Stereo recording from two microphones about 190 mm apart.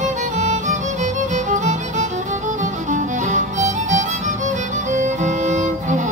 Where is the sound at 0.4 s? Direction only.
40° right (ahead or behind).